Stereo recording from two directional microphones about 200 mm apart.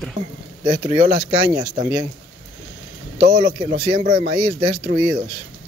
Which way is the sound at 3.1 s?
35° right (ahead or behind).